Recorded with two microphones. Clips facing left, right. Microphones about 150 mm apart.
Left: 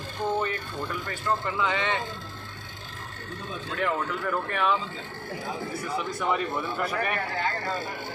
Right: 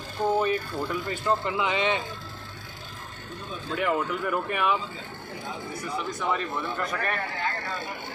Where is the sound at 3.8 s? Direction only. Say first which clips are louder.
Right 2 dB; 10° right (ahead or behind).